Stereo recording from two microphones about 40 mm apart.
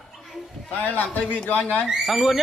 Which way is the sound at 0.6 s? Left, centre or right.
Left.